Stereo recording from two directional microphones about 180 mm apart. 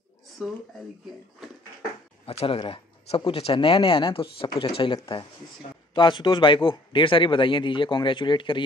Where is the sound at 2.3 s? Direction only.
30° left (ahead or behind).